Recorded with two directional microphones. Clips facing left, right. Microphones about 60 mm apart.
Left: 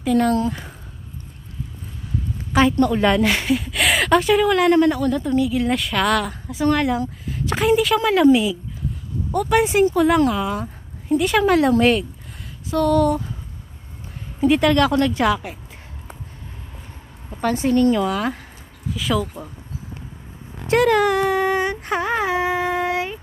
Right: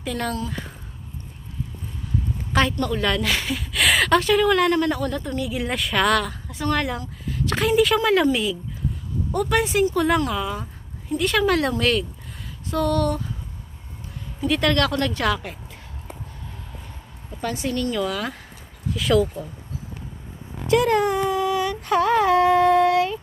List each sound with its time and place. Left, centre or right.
0.0 s speech: centre
2.5 s speech: centre
9.6 s speech: centre
9.9 s speech: centre
12.6 s a sound: centre
14.5 s speech: centre
17.4 s a woman's voice: left
17.6 s speech: left
18.9 s a sound: centre
20.8 s speech: left
21.5 s a sound: left